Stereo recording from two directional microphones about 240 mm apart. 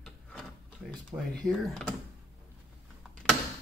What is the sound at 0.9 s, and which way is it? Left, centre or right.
Speech, centre.